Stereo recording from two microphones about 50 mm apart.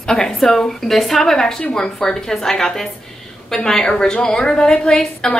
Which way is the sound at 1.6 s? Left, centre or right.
Left.